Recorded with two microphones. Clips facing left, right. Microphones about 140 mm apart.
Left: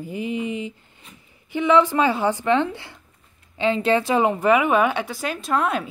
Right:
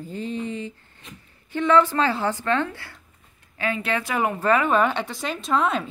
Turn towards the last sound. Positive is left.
turn(degrees=5)  # may be behind; listen again after turning